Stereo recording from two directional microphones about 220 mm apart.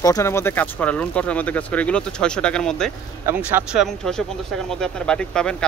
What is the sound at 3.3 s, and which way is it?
Speech, 5° right (ahead or behind).